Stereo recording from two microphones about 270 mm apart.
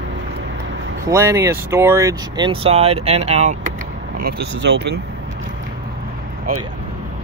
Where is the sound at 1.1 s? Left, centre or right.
Centre.